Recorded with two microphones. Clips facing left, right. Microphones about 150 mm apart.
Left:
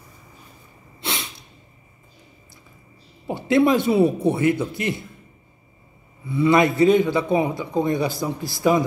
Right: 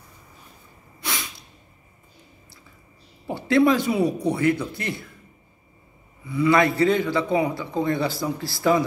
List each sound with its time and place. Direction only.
1.0 s sneeze: 30° left (ahead or behind)
3.3 s a man's voice: 20° left (ahead or behind)
6.2 s a man's voice: 25° left (ahead or behind)